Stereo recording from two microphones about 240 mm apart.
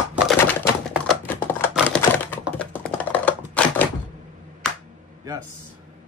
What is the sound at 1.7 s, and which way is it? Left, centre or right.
Typewriter, centre.